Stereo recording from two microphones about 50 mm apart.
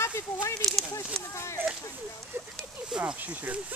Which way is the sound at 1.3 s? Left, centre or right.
Left.